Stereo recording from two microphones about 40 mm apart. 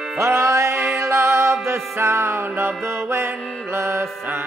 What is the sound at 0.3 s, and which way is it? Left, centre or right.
Music, right.